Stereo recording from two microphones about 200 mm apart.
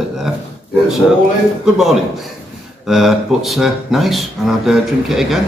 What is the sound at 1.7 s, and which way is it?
Speech, centre (ahead or behind).